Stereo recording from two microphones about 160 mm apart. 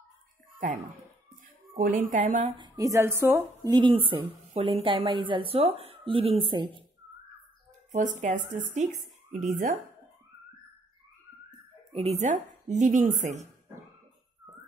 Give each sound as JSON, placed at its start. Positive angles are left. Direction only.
{"t": 1.7, "sound": "a woman's voice", "side_deg": -60}
{"t": 2.5, "sound": "a woman's voice", "side_deg": -25}
{"t": 8.2, "sound": "speech", "side_deg": -50}
{"t": 11.9, "sound": "a woman's voice", "side_deg": -40}